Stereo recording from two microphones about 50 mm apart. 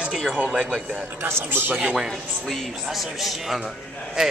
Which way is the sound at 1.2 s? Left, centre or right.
Right.